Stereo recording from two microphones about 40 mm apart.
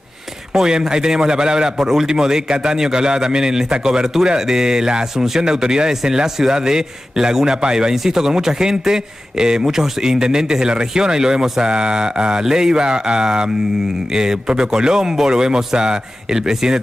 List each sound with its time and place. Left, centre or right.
0.6 s a man's voice: centre